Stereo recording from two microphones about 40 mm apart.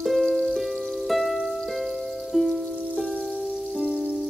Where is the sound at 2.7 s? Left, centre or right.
Right.